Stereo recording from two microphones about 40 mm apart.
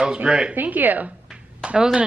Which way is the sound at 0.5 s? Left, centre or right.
Right.